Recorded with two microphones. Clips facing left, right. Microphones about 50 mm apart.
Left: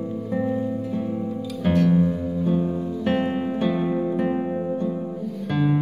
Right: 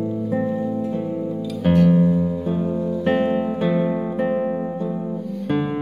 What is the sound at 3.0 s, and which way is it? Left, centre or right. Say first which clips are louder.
Music: right 4 dB; right.